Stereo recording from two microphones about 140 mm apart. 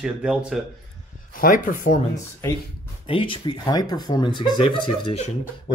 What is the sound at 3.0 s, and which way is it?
Speech, 40° left (ahead or behind).